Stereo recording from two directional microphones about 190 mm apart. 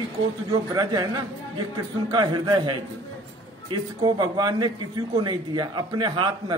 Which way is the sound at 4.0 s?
20° right (ahead or behind).